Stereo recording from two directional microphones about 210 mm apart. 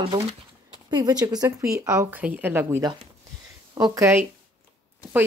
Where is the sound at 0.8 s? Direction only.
20° right (ahead or behind).